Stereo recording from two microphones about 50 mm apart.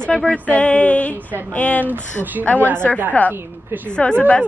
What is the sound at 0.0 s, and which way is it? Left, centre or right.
Speech, left.